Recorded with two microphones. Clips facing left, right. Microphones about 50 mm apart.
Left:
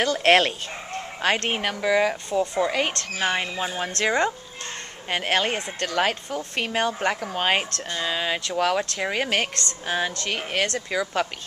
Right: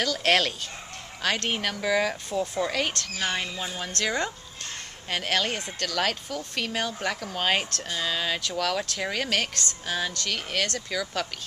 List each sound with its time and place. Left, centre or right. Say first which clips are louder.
0.0 s speech: left 5 dB; left